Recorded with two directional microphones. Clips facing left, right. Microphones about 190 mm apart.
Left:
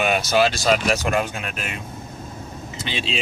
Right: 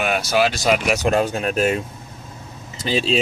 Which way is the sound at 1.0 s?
35° right (ahead or behind).